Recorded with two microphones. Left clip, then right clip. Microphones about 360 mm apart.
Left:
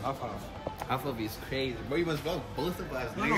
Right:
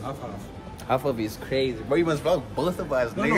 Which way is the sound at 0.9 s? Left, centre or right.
Centre.